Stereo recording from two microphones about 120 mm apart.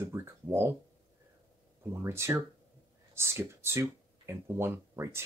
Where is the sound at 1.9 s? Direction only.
20° right (ahead or behind).